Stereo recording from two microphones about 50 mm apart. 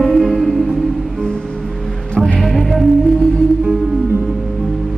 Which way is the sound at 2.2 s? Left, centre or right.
Centre.